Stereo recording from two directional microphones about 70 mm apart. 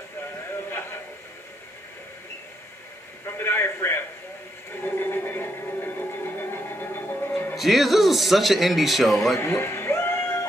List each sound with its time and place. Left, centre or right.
3.3 s a sound: left
7.5 s speech: centre
9.4 s cat: left